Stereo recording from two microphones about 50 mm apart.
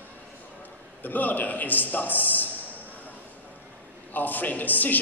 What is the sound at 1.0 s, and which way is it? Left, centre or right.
A man's voice, left.